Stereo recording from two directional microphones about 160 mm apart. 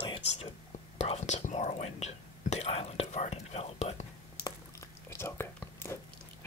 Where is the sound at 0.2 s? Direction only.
40° left (ahead or behind).